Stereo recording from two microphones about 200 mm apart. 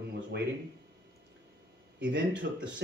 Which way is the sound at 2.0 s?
60° right (ahead or behind).